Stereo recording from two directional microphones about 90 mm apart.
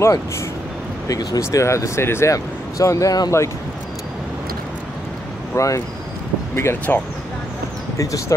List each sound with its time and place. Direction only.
1.0 s speech: 40° left (ahead or behind)
5.5 s speech: 35° left (ahead or behind)
8.0 s speech: 35° left (ahead or behind)